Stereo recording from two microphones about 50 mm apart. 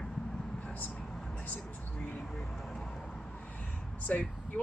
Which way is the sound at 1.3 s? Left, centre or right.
Left.